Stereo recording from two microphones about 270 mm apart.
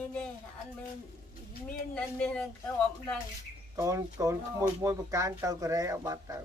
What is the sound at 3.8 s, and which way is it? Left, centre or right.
Speech, centre.